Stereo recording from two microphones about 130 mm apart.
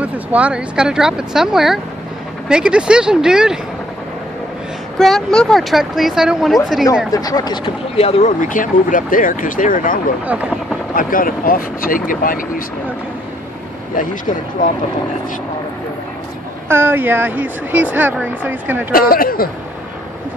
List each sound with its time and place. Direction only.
0.0 s speech: 10° right (ahead or behind)
4.9 s speech: 5° left (ahead or behind)
7.1 s speech: 30° left (ahead or behind)
8.0 s speech: 50° left (ahead or behind)
8.4 s speech: 90° left
11.0 s speech: 90° left
16.6 s speech: 20° right (ahead or behind)
18.9 s speech: 90° left